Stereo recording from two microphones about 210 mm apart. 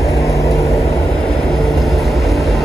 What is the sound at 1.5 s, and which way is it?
Vehicle, centre (ahead or behind).